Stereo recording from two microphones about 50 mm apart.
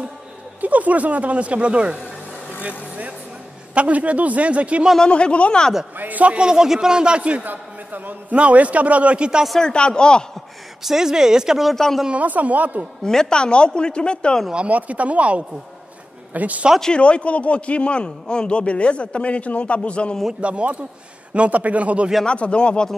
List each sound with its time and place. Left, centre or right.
0.6 s a man's voice: right
3.7 s a man's voice: right
4.9 s a man's voice: centre
5.9 s a man's voice: right
7.4 s a man's voice: right
9.6 s speech: centre
10.8 s speech: centre
11.7 s speech: centre
12.1 s a man's voice: right
13.0 s a man's voice: centre
14.5 s a man's voice: right
16.8 s a man's voice: left
20.3 s a man's voice: right
22.2 s a man's voice: left